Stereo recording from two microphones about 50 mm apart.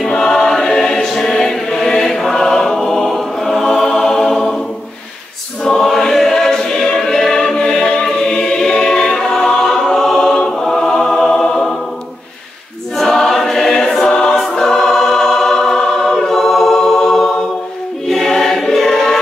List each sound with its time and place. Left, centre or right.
0.1 s choir: centre
5.6 s choir: centre
12.9 s choir: centre